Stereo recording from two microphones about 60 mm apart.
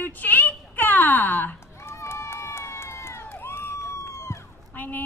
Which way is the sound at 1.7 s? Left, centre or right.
Left.